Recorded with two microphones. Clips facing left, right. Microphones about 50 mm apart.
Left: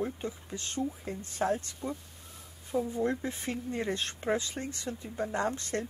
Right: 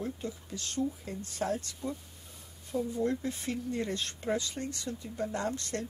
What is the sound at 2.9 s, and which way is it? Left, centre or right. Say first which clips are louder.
Speech: even; left.